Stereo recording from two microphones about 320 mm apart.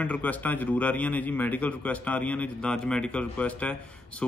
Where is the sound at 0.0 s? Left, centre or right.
Centre.